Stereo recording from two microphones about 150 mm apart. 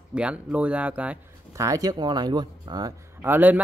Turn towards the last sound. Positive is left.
turn(degrees=-15)  # may be behind; listen again after turning